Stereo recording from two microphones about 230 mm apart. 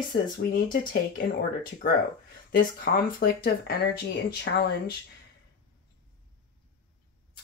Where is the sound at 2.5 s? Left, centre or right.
Left.